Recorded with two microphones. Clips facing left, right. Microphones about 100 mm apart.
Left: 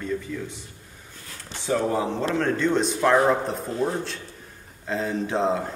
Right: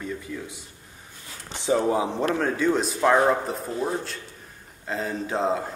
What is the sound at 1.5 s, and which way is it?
A man's voice, 15° right (ahead or behind).